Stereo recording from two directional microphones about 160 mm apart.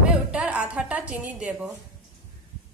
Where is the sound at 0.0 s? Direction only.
5° right (ahead or behind).